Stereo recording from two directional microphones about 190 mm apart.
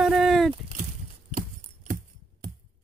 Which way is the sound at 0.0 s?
Centre (ahead or behind).